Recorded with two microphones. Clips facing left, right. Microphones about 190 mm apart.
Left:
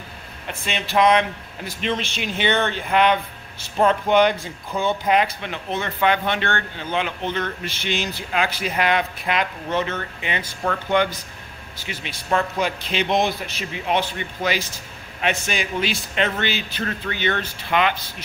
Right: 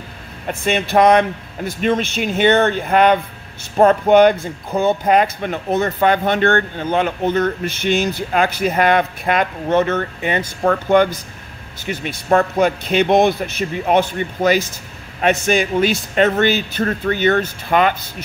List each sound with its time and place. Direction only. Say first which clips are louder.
0.5 s speech: right 9 dB; 50° right (ahead or behind)